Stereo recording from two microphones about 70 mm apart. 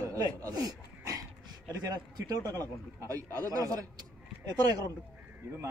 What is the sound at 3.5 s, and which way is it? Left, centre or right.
Speech, right.